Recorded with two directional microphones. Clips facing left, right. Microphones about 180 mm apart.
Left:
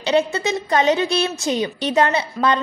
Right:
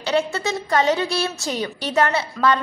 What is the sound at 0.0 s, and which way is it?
A woman's voice, 20° left (ahead or behind).